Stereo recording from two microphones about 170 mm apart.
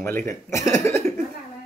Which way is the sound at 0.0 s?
15° left (ahead or behind).